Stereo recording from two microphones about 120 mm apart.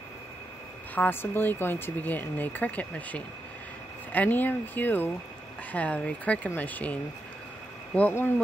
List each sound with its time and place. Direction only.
0.9 s speech: 15° left (ahead or behind)